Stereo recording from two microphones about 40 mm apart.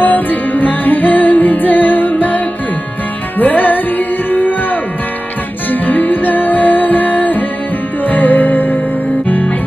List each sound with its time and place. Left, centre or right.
0.0 s music: left